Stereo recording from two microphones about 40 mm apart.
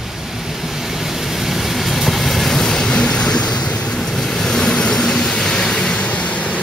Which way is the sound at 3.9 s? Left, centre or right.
Centre.